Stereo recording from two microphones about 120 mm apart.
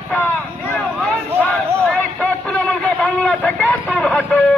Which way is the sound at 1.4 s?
10° left (ahead or behind).